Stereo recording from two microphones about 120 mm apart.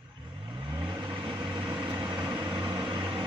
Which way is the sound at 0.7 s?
35° right (ahead or behind).